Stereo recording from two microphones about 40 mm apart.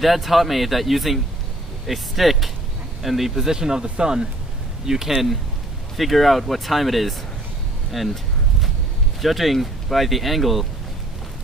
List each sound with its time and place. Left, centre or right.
0.0 s speech: centre
5.9 s speech: centre
9.2 s speech: centre